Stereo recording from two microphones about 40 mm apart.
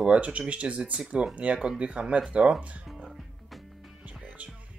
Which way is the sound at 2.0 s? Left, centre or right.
Right.